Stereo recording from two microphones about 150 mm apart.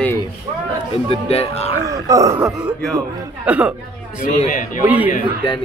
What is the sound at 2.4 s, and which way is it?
A man's voice, centre (ahead or behind).